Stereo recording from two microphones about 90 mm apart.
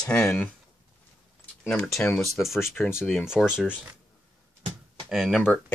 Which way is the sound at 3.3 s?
5° right (ahead or behind).